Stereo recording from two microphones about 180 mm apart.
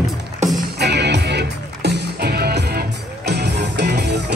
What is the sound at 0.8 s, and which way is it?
Music, 70° right (ahead or behind).